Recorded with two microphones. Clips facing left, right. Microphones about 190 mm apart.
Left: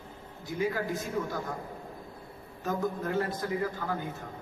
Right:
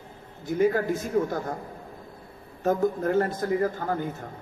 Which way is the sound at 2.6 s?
50° right (ahead or behind).